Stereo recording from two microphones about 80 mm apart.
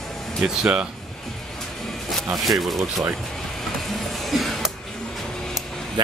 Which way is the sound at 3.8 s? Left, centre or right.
Centre.